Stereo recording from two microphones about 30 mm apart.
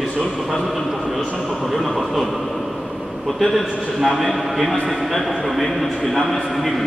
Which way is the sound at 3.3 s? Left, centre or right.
Centre.